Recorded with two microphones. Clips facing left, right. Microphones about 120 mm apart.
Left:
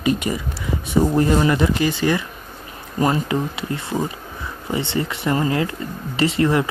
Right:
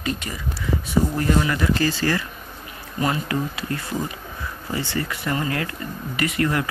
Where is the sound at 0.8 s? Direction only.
25° left (ahead or behind).